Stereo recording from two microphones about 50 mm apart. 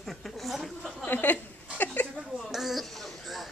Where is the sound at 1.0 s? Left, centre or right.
Left.